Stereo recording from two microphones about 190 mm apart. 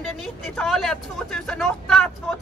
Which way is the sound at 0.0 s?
Centre (ahead or behind).